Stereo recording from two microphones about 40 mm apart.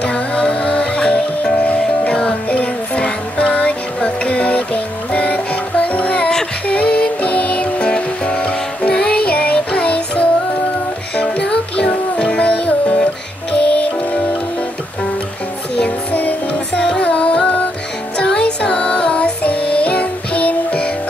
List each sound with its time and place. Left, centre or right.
0.0 s music: left
16.1 s music: left
16.8 s music: left